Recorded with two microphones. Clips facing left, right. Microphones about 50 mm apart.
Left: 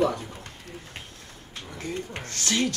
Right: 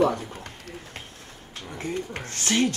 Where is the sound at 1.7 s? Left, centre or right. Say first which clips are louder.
Right 3 dB; right.